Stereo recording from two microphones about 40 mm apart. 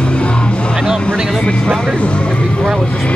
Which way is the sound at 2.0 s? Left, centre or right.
Left.